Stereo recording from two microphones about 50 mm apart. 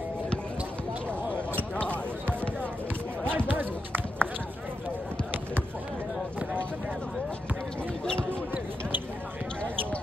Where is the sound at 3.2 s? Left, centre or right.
Right.